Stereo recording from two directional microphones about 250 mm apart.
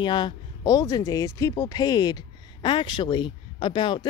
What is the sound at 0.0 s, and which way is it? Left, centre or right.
Speech, centre.